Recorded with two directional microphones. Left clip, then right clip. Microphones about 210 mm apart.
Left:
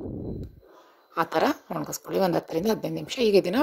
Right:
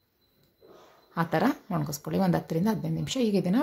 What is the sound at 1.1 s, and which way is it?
A woman's voice, 30° left (ahead or behind).